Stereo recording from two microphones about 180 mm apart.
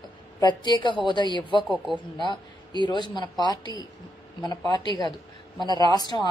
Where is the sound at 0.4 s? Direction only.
25° left (ahead or behind).